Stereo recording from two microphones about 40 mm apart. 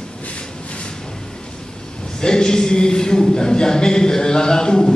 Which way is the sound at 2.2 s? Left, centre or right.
Centre.